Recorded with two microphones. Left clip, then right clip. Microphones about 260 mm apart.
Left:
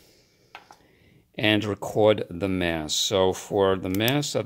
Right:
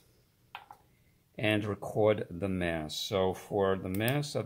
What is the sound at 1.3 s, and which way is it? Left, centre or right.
Speech, left.